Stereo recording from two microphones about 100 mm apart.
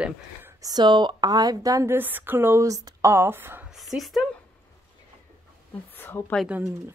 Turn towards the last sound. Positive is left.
turn(degrees=-10)  # may be behind; listen again after turning